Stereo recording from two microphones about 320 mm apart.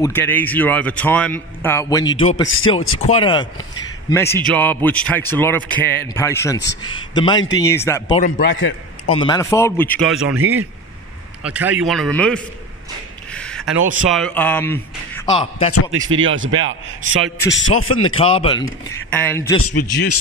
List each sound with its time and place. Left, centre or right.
0.0 s a man's voice: centre
2.4 s speech: left
3.1 s a man's voice: centre
8.3 s a man's voice: left
9.1 s a man's voice: centre
13.3 s a sound: centre
14.0 s a man's voice: centre
15.9 s a man's voice: right
17.5 s speech: left
18.0 s a man's voice: centre